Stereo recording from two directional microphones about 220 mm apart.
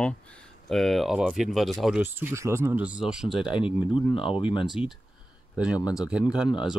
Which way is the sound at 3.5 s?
25° left (ahead or behind).